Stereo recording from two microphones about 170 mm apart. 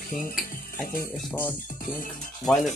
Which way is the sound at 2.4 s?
Centre (ahead or behind).